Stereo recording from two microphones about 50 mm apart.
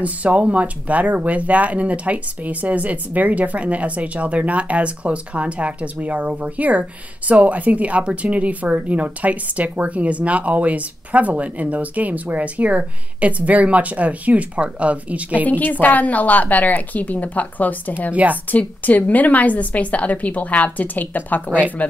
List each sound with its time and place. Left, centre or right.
0.0 s speech: right
15.4 s a woman's voice: left
18.1 s a woman's voice: right
18.5 s a woman's voice: left
21.5 s speech: right